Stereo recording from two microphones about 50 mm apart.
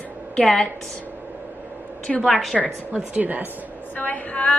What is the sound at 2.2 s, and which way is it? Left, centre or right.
Speech, centre.